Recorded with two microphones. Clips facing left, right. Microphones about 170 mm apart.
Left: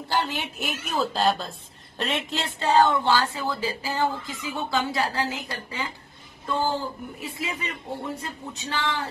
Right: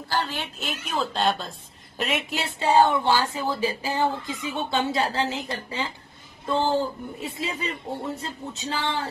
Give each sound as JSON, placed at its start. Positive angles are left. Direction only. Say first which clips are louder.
{"t": 0.1, "sound": "a woman's voice", "louder": "left 1 dB", "side_deg": 15}
{"t": 6.4, "sound": "music", "louder": "right 2 dB", "side_deg": -25}
{"t": 7.2, "sound": "speech", "louder": "right 3 dB", "side_deg": -25}